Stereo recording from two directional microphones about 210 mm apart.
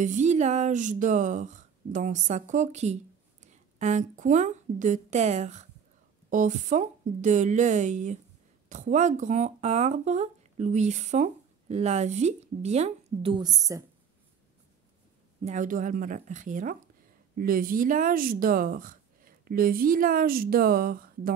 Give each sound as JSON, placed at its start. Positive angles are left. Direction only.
{"t": 0.0, "sound": "speech", "side_deg": -35}
{"t": 15.4, "sound": "speech", "side_deg": -35}